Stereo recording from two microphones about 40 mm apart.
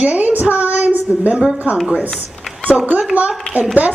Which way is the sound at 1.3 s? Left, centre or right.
Centre.